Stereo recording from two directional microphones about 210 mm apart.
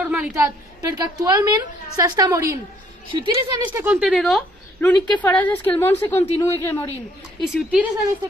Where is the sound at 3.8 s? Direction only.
5° right (ahead or behind); by 6.9 s 15° left (ahead or behind).